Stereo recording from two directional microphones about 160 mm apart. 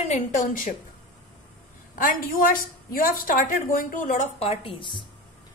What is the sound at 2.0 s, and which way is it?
A woman's voice, 60° left (ahead or behind).